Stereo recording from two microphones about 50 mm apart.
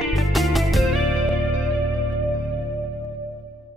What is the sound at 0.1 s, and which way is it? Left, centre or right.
Music, centre.